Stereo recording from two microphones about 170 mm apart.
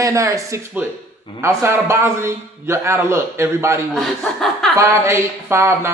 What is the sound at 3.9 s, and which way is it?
Speech, centre (ahead or behind).